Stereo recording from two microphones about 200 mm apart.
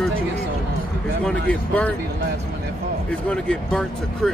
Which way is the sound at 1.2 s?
5° left (ahead or behind).